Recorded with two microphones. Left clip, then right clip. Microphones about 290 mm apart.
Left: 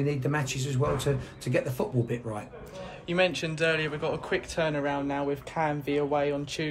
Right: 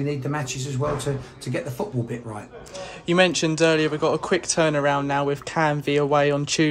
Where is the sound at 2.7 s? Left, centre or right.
Right.